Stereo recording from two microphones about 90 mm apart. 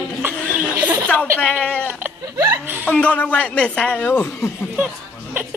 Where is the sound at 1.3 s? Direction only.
15° left (ahead or behind).